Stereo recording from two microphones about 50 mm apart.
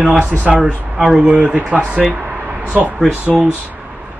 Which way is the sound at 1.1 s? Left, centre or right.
Right.